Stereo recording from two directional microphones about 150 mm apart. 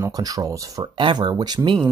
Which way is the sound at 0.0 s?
25° right (ahead or behind).